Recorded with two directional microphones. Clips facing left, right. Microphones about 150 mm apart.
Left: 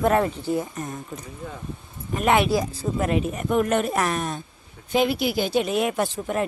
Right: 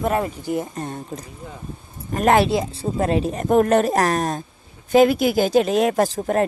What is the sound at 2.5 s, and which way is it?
A man's voice, 25° right (ahead or behind).